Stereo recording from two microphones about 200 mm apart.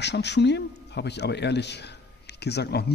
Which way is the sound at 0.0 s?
60° left (ahead or behind).